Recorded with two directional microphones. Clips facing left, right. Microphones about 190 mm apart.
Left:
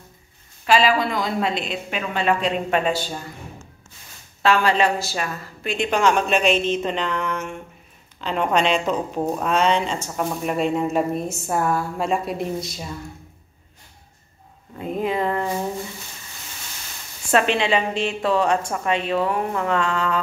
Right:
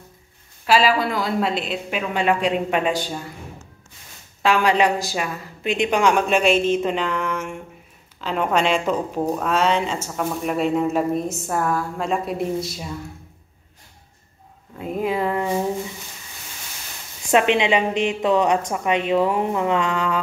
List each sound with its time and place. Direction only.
0.7 s a woman's voice: 5° right (ahead or behind)
4.4 s a woman's voice: 15° right (ahead or behind)
14.8 s speech: 5° right (ahead or behind)
17.3 s a woman's voice: 15° right (ahead or behind)